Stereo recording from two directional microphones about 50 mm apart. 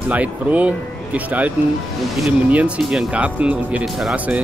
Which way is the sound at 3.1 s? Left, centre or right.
Right.